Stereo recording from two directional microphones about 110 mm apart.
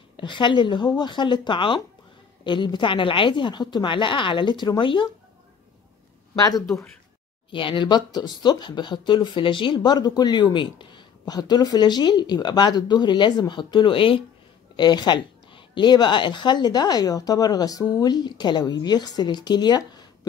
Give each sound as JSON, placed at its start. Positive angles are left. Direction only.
{"t": 0.2, "sound": "speech", "side_deg": 45}
{"t": 6.3, "sound": "speech", "side_deg": 35}
{"t": 7.5, "sound": "speech", "side_deg": 50}
{"t": 14.8, "sound": "a woman's voice", "side_deg": 40}